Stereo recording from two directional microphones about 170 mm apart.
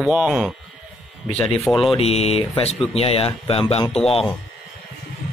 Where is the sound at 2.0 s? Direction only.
35° left (ahead or behind).